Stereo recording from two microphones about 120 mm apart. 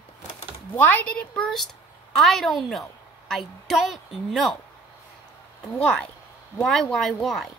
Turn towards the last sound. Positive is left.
turn(degrees=0)  # may be behind; listen again after turning